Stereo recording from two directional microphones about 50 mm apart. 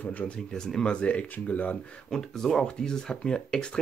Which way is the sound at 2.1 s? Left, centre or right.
Centre.